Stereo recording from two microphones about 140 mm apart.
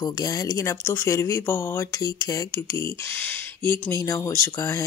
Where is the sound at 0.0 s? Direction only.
25° left (ahead or behind).